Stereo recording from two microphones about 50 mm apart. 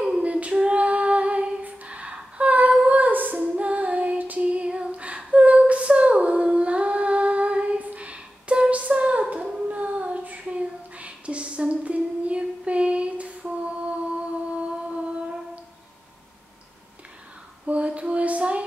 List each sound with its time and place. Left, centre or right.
0.2 s female singing: right
4.9 s humming: right
9.7 s child singing: right
17.6 s a sound: right